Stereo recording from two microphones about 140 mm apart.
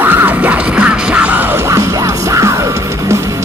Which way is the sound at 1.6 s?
20° right (ahead or behind).